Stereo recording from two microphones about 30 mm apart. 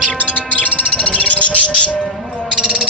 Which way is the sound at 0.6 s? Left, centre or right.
Left.